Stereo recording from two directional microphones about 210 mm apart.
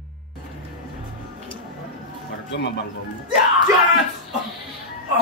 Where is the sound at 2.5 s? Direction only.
55° left (ahead or behind).